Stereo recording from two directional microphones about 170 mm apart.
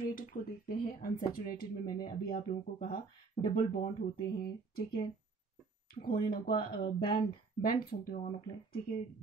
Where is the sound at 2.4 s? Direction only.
45° left (ahead or behind).